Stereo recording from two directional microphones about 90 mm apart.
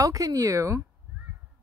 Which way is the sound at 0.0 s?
40° right (ahead or behind).